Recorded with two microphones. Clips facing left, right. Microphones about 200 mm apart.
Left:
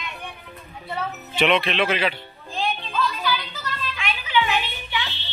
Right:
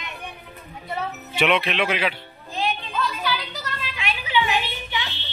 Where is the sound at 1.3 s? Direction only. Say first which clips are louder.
Left 1 dB; 10° right (ahead or behind).